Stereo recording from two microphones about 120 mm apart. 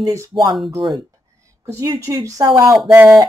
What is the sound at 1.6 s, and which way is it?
Speech, 20° right (ahead or behind).